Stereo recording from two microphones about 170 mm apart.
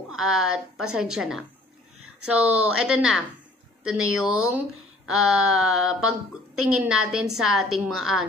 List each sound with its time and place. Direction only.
0.1 s speech: centre (ahead or behind)